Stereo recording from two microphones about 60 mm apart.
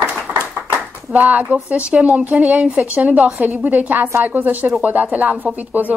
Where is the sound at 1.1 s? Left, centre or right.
Right.